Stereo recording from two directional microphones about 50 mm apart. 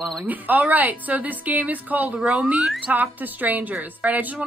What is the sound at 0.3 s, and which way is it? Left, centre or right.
A woman's voice, right.